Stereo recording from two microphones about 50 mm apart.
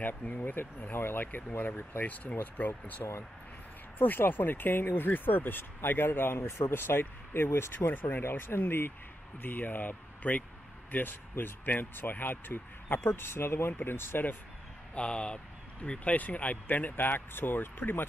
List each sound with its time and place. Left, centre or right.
0.2 s speech: left
7.9 s speech: left
8.2 s speech: left
15.0 s speech: centre; by 18.0 s left